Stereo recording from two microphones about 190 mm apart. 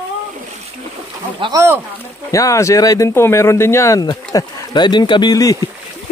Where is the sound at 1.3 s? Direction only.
25° right (ahead or behind).